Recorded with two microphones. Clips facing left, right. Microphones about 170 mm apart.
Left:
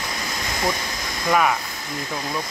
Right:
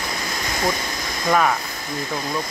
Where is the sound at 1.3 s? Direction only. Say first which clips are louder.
Right 1 dB; 5° left (ahead or behind).